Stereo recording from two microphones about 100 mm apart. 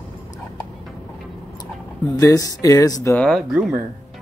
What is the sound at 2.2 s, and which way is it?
Speech, 35° left (ahead or behind).